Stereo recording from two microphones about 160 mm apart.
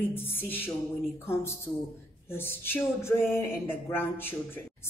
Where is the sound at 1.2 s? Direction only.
15° left (ahead or behind).